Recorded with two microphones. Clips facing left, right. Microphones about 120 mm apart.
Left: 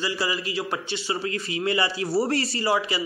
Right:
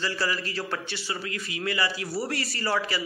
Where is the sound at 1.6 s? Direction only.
25° left (ahead or behind).